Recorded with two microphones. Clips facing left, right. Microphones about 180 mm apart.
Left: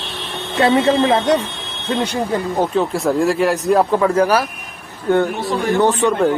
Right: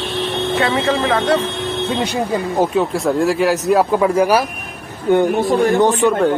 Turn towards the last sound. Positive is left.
turn(degrees=-10)  # may be behind; listen again after turning